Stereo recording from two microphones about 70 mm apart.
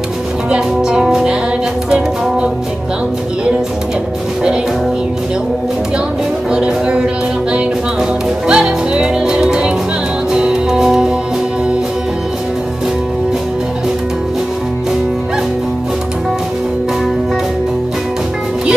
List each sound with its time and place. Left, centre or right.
0.5 s music: centre
6.5 s music: centre